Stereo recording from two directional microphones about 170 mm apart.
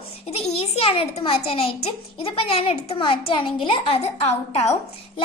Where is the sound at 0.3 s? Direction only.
35° left (ahead or behind).